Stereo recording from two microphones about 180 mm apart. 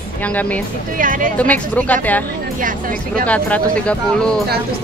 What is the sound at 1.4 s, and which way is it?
Speech, 10° left (ahead or behind).